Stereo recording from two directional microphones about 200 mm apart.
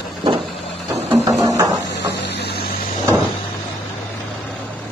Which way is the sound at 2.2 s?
55° left (ahead or behind).